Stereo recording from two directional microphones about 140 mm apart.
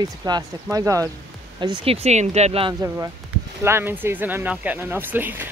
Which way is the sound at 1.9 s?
50° right (ahead or behind).